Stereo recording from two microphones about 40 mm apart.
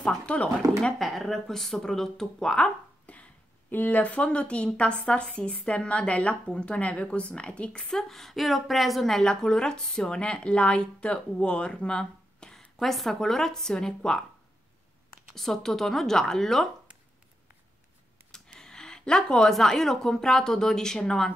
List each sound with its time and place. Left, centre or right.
0.3 s speech: left
0.9 s speech: centre
3.1 s a sound: left
3.7 s speech: left
4.0 s a woman's voice: left
7.9 s a woman's voice: centre
9.3 s a woman's voice: centre
12.5 s speech: centre
15.3 s speech: centre
18.3 s a sound: centre
19.5 s speech: centre